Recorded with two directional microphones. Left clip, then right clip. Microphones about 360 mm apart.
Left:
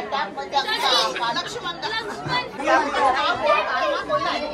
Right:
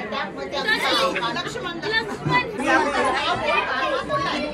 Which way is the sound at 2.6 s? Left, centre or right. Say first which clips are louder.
Left 4 dB; left.